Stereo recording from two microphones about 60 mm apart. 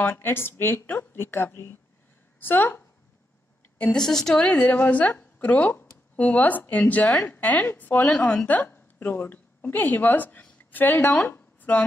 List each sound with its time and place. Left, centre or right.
0.0 s speech: left
2.4 s speech: left
3.9 s a woman's voice: centre
4.5 s a woman's voice: left